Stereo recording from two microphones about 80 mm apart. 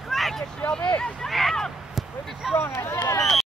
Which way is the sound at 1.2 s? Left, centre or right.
Centre.